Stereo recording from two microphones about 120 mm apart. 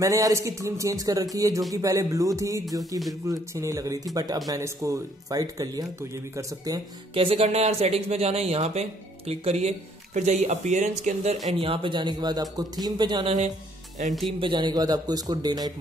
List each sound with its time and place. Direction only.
0.0 s speech: 30° right (ahead or behind)
7.2 s speech: 55° right (ahead or behind); by 11.3 s 80° right
11.6 s speech: 45° right (ahead or behind)
14.4 s speech: 40° right (ahead or behind)